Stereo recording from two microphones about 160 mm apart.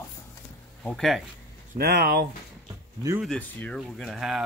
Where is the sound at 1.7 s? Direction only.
80° right.